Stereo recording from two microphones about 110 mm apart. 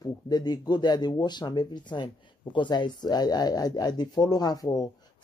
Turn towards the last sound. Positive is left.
turn(degrees=35)  # may be behind; listen again after turning